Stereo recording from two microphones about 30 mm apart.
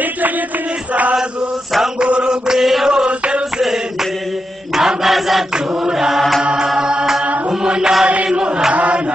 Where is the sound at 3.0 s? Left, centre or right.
Right.